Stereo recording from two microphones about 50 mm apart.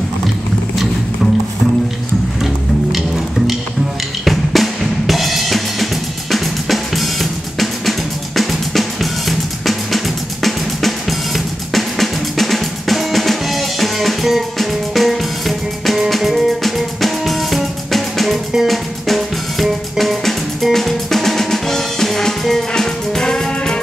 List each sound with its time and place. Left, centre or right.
2.9 s music: centre
4.2 s drum: centre
6.3 s drum kit: centre
8.4 s music: centre
18.7 s drum kit: centre
22.7 s music: centre